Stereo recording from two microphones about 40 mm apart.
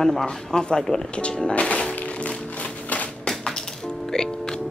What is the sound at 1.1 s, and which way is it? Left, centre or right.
Speech, left.